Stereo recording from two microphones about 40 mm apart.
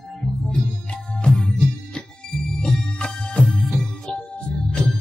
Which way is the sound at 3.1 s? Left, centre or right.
Centre.